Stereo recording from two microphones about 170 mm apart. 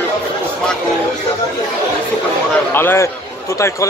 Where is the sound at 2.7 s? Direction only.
15° left (ahead or behind).